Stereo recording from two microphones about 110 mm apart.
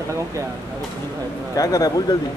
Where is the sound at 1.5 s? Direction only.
30° left (ahead or behind).